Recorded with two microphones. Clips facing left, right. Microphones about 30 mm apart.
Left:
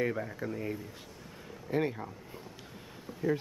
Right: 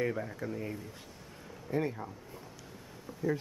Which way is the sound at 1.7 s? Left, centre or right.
Left.